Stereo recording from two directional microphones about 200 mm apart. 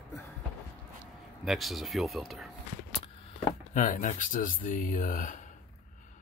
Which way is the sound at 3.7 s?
40° left (ahead or behind).